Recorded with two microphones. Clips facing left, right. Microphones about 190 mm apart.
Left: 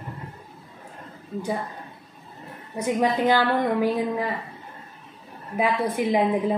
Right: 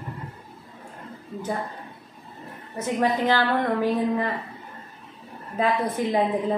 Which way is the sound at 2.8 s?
10° left (ahead or behind).